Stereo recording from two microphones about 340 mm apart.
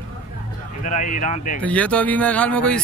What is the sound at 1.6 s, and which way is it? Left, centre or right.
Speech, centre.